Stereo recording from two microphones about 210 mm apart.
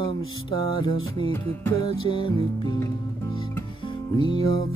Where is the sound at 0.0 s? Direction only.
20° left (ahead or behind).